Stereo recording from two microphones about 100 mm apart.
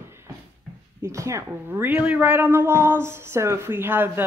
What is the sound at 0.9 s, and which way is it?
Speech, 30° right (ahead or behind).